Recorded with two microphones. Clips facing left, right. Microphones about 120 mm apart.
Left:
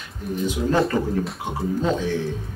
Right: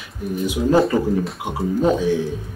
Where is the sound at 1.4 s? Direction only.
15° right (ahead or behind).